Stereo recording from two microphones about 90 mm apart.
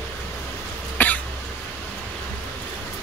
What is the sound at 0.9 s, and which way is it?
Cough, 20° left (ahead or behind).